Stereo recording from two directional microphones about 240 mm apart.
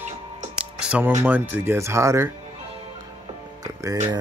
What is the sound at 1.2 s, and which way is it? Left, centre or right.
Speech, centre.